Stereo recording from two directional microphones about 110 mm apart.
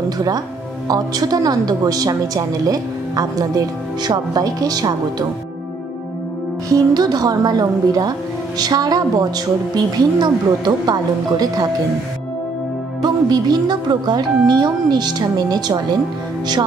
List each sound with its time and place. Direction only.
0.8 s a woman's voice: 35° right (ahead or behind)
6.7 s a woman's voice: 35° right (ahead or behind)
13.0 s a woman's voice: 40° right (ahead or behind)